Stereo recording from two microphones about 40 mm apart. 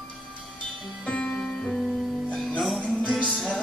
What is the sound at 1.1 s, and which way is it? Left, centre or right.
Music, left.